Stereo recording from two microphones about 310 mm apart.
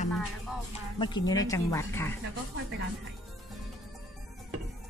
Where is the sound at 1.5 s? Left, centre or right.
Centre.